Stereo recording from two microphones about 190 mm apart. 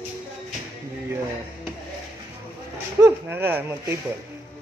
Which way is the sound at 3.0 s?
10° right (ahead or behind).